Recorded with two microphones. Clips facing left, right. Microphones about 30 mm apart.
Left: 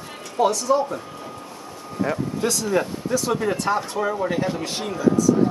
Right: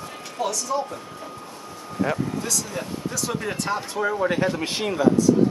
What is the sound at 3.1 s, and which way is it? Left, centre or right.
Speech, centre.